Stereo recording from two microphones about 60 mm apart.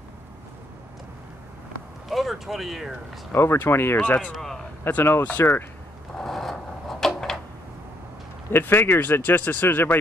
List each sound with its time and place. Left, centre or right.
2.0 s a sound: centre
3.5 s speech: left
6.1 s wood: centre
8.5 s speech: left